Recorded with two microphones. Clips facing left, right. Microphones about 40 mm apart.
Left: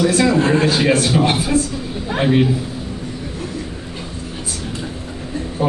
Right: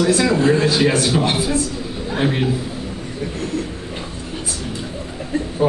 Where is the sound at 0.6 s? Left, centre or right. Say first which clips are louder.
Left 1 dB; left.